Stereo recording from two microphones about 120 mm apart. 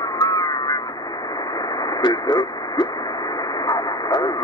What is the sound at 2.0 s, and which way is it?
Radio, 35° left (ahead or behind).